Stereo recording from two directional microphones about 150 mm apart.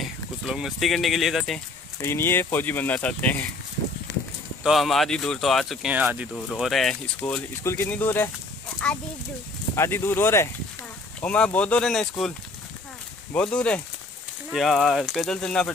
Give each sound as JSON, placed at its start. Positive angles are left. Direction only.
{"t": 0.0, "sound": "speech", "side_deg": 0}
{"t": 2.0, "sound": "speech", "side_deg": 15}
{"t": 4.6, "sound": "speech", "side_deg": 0}
{"t": 6.3, "sound": "speech", "side_deg": 0}
{"t": 7.2, "sound": "speech", "side_deg": 10}